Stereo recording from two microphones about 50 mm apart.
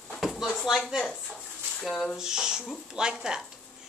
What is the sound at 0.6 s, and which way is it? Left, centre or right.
Speech, centre.